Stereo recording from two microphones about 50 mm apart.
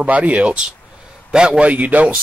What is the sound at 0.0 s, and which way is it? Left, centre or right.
A man's voice, right.